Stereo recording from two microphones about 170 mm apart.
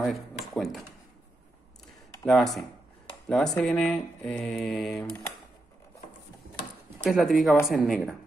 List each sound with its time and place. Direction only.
0.0 s speech: centre (ahead or behind)
2.2 s mantra: centre (ahead or behind)
3.3 s speech: 5° left (ahead or behind)
3.6 s mantra: 5° left (ahead or behind)
5.0 s speech: 10° left (ahead or behind)
7.1 s mantra: centre (ahead or behind)